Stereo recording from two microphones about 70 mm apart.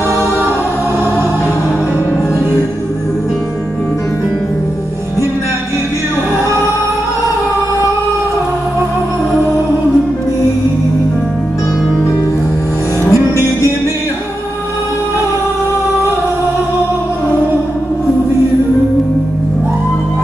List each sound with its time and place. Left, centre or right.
13.0 s music: left